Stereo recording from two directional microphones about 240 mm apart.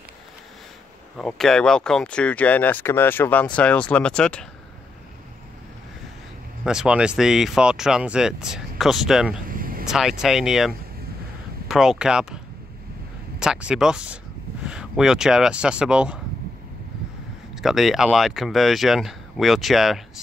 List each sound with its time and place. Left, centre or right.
1.1 s speech: centre
6.6 s speech: centre
9.5 s a sound: right
9.8 s speech: centre
13.4 s speech: centre
17.6 s speech: centre